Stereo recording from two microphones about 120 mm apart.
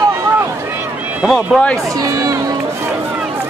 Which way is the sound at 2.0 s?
30° right (ahead or behind).